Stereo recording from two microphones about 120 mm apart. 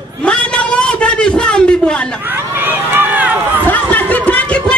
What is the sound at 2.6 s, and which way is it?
Run, 15° right (ahead or behind).